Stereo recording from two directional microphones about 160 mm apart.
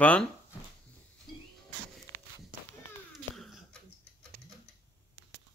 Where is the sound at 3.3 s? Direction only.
Centre (ahead or behind).